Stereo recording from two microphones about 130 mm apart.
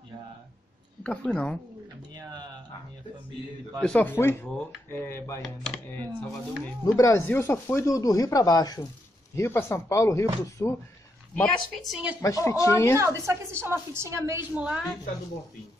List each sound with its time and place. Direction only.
1.0 s speech: 10° left (ahead or behind)
3.8 s speech: 10° left (ahead or behind)
7.0 s speech: 20° left (ahead or behind)
11.3 s a woman's voice: 5° left (ahead or behind)
12.2 s speech: 25° left (ahead or behind)
13.0 s a woman's voice: 20° right (ahead or behind)
14.5 s a woman's voice: 10° right (ahead or behind)